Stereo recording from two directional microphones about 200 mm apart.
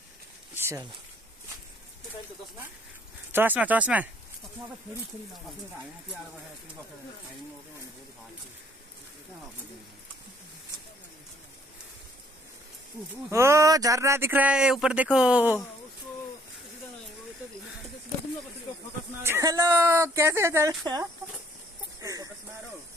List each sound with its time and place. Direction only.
0.6 s speech: 15° right (ahead or behind)
3.3 s speech: 10° right (ahead or behind)
13.3 s speech: 15° right (ahead or behind)
19.2 s speech: 15° right (ahead or behind)